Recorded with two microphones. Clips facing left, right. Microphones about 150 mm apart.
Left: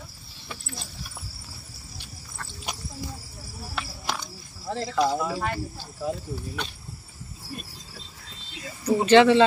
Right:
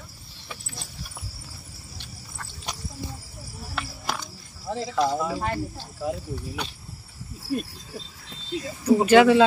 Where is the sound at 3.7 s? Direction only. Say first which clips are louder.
Right 1 dB; centre (ahead or behind).